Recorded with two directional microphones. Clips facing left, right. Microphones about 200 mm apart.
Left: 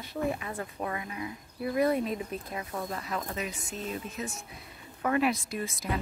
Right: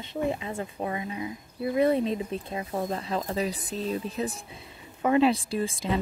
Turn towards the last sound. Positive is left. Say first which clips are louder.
# right 5 dB
turn(degrees=-30)  # may be behind; listen again after turning